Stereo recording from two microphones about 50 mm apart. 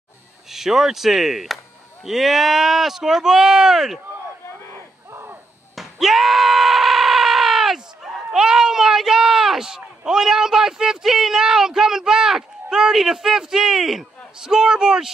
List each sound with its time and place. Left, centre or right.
0.5 s speech: centre
5.1 s a sound: right
5.8 s screaming: centre
8.3 s speech: centre